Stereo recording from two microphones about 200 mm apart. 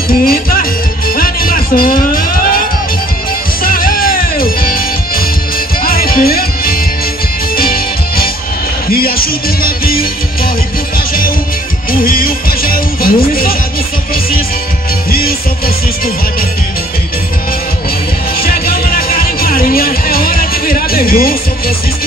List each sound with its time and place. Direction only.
0.2 s music: 45° left (ahead or behind)
3.6 s music: 45° left (ahead or behind)
11.9 s music: 45° left (ahead or behind)
15.0 s music: 50° left (ahead or behind)
18.4 s music: 50° left (ahead or behind)